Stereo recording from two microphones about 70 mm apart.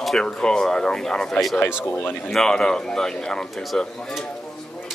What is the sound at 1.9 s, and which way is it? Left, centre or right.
Speech, left.